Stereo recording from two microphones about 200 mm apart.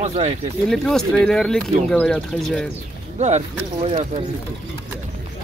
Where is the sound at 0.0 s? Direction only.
35° right (ahead or behind).